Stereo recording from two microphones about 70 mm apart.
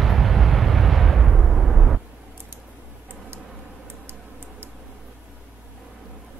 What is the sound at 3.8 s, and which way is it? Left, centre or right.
Tick-tock, right.